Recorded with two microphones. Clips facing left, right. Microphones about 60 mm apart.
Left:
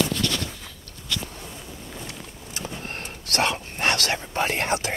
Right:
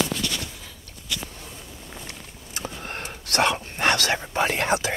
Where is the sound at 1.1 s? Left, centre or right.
Centre.